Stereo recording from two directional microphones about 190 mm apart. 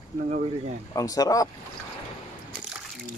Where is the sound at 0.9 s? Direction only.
20° left (ahead or behind).